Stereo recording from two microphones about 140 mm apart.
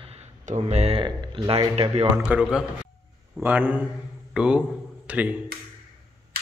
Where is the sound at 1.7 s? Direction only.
45° right (ahead or behind).